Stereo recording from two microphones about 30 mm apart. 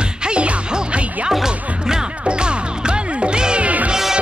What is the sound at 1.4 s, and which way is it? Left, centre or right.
Music, centre.